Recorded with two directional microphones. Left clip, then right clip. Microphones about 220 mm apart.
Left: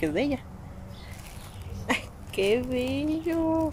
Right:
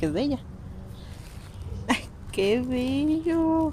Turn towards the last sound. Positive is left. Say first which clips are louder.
# right 3 dB
turn(degrees=-20)  # may be behind; listen again after turning